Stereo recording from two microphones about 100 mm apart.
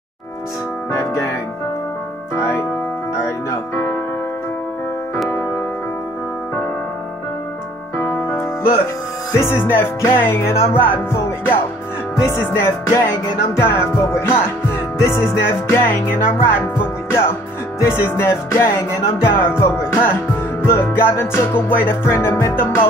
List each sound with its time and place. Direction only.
2.3 s music: 30° left (ahead or behind)
8.0 s music: 30° left (ahead or behind)